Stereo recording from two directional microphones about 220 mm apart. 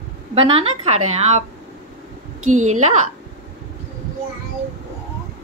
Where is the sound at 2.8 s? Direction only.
30° right (ahead or behind).